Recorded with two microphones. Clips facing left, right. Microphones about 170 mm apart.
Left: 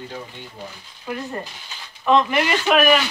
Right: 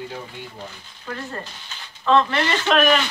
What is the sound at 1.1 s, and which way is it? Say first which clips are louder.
Speech: left 3 dB; 15° left (ahead or behind).